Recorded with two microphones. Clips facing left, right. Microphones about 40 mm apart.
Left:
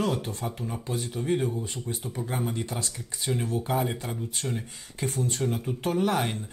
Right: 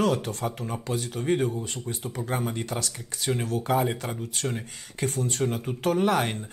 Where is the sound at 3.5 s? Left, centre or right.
Right.